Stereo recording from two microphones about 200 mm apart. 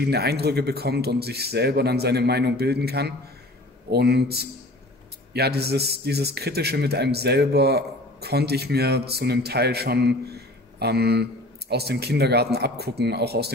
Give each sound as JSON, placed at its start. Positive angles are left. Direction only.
{"t": 0.0, "sound": "speech", "side_deg": -55}